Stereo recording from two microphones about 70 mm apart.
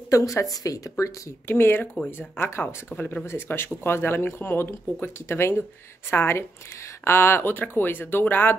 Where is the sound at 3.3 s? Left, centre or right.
Left.